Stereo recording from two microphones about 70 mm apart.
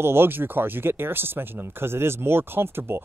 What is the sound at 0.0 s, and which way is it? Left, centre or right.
Speech, right.